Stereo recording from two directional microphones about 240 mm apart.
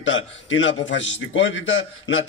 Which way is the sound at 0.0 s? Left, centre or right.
Left.